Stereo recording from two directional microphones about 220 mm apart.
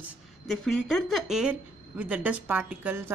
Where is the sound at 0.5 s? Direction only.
Centre (ahead or behind).